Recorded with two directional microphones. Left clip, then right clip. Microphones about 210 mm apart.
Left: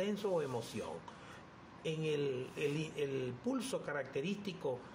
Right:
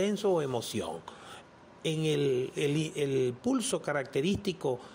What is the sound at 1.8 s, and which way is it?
Speech, 40° right (ahead or behind).